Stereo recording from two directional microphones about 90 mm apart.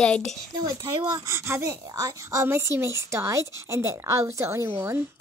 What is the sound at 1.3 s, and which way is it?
Speech, 30° right (ahead or behind).